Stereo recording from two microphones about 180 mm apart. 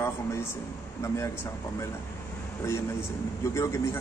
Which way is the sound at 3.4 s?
15° left (ahead or behind).